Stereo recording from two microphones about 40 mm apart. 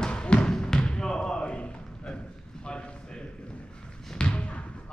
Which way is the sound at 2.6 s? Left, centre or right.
Left.